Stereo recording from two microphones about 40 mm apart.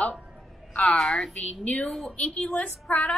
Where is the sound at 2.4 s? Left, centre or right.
Left.